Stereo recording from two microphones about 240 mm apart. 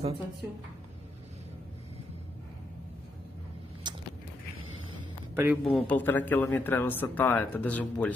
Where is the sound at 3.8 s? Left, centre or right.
Centre.